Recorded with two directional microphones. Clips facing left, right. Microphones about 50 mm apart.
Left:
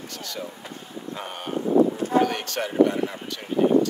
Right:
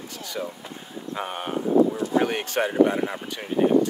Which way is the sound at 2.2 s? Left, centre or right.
Centre.